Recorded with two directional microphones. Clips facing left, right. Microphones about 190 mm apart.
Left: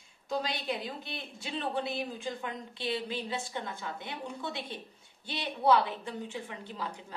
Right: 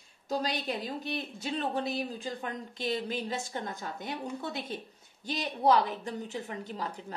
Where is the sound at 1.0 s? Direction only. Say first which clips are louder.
Right 6 dB; 40° right (ahead or behind).